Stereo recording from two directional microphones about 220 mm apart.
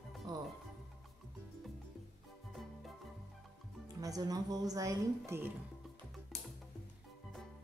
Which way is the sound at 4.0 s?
15° right (ahead or behind).